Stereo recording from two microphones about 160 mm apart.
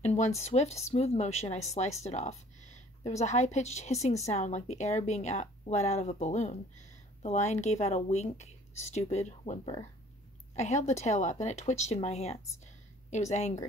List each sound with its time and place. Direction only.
0.0 s a woman's voice: 45° left (ahead or behind)